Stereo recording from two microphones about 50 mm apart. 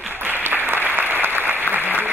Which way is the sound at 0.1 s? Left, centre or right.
Right.